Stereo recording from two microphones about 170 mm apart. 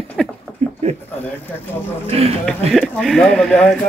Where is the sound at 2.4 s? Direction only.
Centre (ahead or behind).